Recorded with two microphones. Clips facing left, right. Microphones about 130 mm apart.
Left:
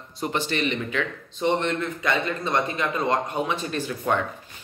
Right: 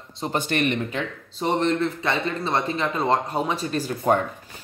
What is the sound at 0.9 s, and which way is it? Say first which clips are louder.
Speech: left 1 dB; 35° right (ahead or behind).